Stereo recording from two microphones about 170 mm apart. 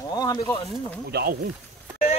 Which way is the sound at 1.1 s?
65° right (ahead or behind).